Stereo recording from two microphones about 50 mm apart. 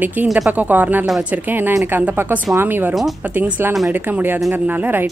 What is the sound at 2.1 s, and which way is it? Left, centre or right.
Speech, right.